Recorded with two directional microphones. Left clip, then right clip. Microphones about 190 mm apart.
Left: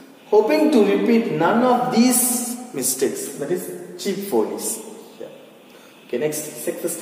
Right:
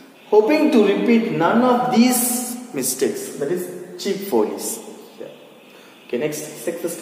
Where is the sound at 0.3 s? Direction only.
15° right (ahead or behind).